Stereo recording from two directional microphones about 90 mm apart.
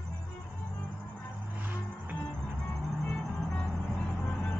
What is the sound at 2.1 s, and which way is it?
Music, 15° left (ahead or behind).